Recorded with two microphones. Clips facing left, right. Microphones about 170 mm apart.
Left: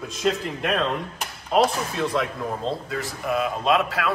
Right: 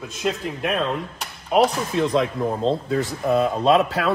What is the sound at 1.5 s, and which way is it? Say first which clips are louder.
A man's voice: right 2 dB; 15° right (ahead or behind).